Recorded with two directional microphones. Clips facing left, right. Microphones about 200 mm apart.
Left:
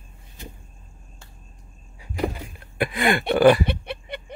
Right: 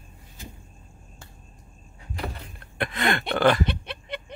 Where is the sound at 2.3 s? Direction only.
10° left (ahead or behind).